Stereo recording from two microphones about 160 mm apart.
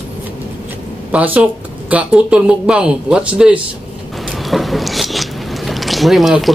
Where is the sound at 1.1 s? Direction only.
10° right (ahead or behind).